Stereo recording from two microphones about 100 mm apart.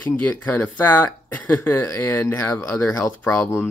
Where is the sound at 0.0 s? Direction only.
20° left (ahead or behind).